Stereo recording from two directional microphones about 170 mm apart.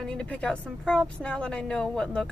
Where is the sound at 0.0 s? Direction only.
5° left (ahead or behind).